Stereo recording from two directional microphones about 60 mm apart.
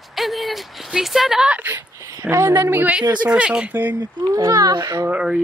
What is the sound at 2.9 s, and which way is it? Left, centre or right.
Speech, centre.